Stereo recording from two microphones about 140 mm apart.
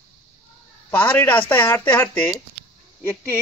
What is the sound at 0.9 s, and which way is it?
Speech, 10° left (ahead or behind).